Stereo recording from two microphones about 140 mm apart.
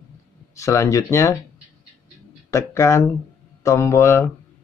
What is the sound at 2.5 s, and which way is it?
Speech, 20° left (ahead or behind).